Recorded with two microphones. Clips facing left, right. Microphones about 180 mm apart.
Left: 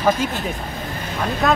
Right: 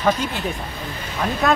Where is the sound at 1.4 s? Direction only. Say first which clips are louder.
Even; centre (ahead or behind).